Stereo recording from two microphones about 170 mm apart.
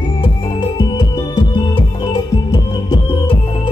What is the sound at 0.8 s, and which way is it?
Music, 25° left (ahead or behind).